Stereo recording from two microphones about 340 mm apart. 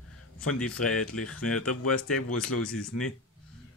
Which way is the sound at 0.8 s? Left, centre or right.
Left.